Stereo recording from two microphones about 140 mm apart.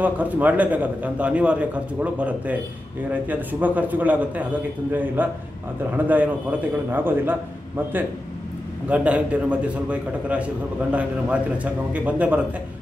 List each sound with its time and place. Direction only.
0.0 s a man's voice: 10° right (ahead or behind)